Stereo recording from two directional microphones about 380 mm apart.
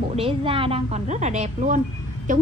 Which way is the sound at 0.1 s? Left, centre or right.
Centre.